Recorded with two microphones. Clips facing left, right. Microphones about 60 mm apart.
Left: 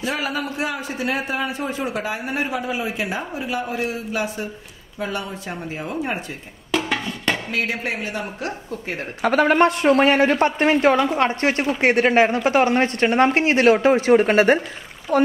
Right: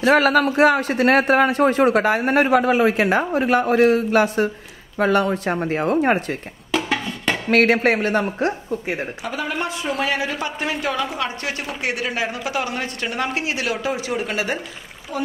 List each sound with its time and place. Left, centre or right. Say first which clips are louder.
0.0 s a man's voice: right 10 dB; right
6.7 s a sound: right 1 dB; centre
7.5 s a man's voice: right 9 dB; right
8.6 s a woman's voice: right 4 dB; centre
9.2 s a woman's voice: left 15 dB; left
15.1 s speech: left 9 dB; left